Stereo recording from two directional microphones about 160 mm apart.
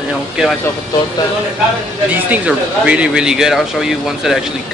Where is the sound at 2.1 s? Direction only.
10° right (ahead or behind).